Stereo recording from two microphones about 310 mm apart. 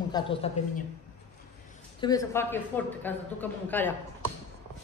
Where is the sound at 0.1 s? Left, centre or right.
Centre.